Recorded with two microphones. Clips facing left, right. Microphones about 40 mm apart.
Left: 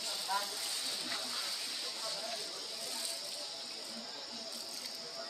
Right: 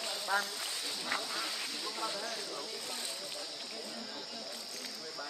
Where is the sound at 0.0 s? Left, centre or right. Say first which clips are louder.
Right 4 dB; right.